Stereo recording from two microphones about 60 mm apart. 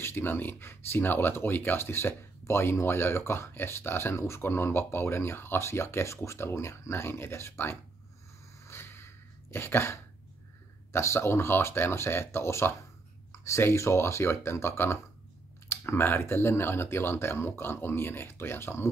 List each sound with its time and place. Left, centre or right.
0.0 s speech: left
8.6 s a sound: left
10.9 s speech: left